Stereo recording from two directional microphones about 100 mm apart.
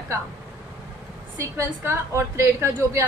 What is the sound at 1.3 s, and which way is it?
A woman's voice, 30° right (ahead or behind).